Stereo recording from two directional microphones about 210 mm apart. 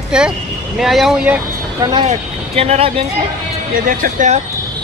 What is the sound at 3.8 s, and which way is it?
Speech, 40° right (ahead or behind).